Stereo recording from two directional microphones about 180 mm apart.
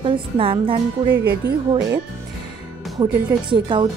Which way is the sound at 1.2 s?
60° right (ahead or behind).